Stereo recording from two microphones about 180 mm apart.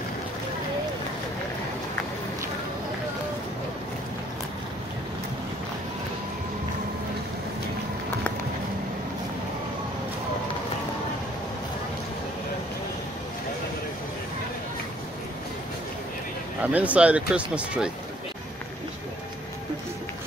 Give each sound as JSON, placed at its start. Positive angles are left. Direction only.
{"t": 16.6, "sound": "speech", "side_deg": -10}